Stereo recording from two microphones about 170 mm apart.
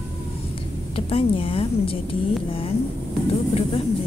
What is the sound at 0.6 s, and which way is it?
Speech, 35° left (ahead or behind).